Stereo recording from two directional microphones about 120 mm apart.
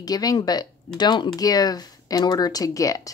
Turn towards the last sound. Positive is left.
turn(degrees=30)  # may be behind; listen again after turning